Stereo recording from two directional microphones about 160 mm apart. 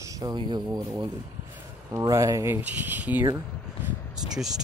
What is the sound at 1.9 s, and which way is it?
Speech, 20° right (ahead or behind).